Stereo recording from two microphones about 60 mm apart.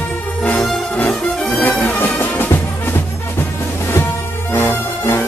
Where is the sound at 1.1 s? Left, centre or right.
Centre.